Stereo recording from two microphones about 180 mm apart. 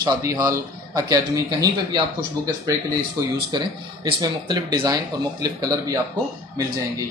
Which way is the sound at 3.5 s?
25° right (ahead or behind).